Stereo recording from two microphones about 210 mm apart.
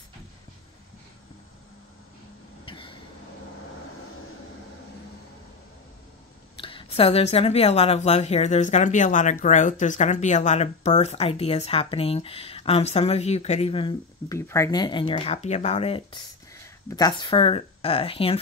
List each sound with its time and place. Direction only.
2.6 s vehicle: 25° left (ahead or behind)
6.5 s a woman's voice: 25° left (ahead or behind)
14.4 s speech: 15° left (ahead or behind)